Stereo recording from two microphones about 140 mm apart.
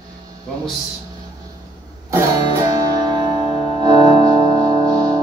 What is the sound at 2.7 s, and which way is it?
Music, 25° right (ahead or behind).